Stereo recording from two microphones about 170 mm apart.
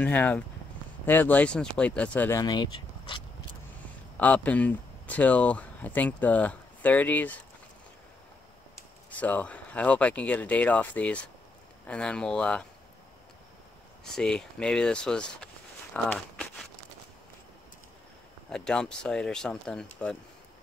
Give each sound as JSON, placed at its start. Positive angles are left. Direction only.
{"t": 0.0, "sound": "speech", "side_deg": 10}
{"t": 2.4, "sound": "speech", "side_deg": 25}
{"t": 4.2, "sound": "speech", "side_deg": 10}
{"t": 9.1, "sound": "speech", "side_deg": 10}
{"t": 14.1, "sound": "speech", "side_deg": 5}
{"t": 18.5, "sound": "speech", "side_deg": 5}